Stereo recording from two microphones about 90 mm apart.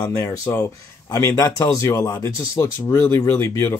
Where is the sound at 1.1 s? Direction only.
40° left (ahead or behind).